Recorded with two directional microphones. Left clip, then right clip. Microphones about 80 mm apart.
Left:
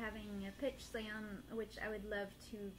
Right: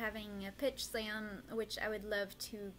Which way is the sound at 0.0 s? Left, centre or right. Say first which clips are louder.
Right 5 dB; right.